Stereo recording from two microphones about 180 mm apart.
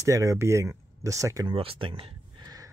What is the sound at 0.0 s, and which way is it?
Speech, 15° right (ahead or behind).